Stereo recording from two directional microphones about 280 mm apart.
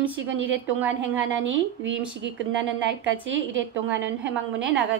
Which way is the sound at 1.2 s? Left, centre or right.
Right.